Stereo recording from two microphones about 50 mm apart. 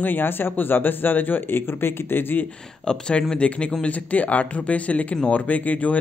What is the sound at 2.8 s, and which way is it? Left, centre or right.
Speech, centre.